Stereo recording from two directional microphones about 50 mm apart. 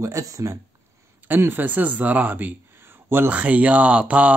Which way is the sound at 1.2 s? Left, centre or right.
Right.